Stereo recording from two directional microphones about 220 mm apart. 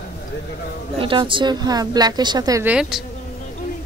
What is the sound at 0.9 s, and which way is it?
A woman's voice, 25° right (ahead or behind).